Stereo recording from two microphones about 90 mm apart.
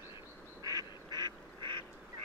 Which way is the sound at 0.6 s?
45° right (ahead or behind).